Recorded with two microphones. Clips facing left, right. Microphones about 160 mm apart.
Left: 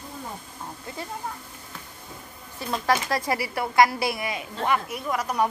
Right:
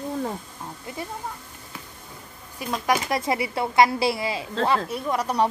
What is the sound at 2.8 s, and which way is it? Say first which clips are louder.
Speech: right 1 dB; 20° right (ahead or behind).